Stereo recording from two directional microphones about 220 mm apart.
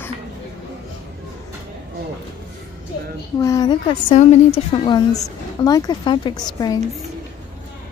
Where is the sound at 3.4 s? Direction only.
15° left (ahead or behind).